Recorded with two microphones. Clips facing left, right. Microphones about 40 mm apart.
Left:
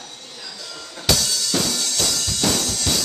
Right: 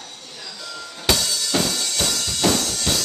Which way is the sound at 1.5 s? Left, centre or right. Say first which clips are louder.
Right 2 dB; right.